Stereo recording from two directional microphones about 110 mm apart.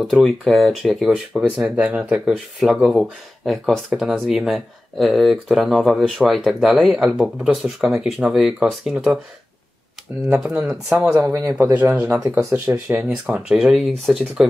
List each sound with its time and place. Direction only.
0.0 s speech: 5° left (ahead or behind)
10.2 s speech: 10° right (ahead or behind)
11.2 s speech: 25° right (ahead or behind)
12.2 s speech: 30° right (ahead or behind); by 14.4 s centre (ahead or behind)